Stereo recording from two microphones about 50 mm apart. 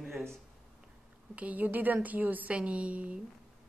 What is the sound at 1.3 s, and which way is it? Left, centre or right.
Speech, right.